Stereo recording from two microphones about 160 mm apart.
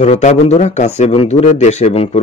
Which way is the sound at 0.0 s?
45° left (ahead or behind).